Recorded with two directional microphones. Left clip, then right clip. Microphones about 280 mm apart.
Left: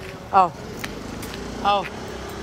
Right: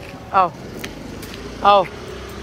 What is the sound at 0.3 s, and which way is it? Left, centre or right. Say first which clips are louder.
Speech: right 1 dB; centre.